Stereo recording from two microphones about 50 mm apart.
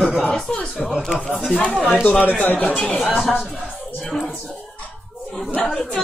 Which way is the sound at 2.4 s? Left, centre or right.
Left.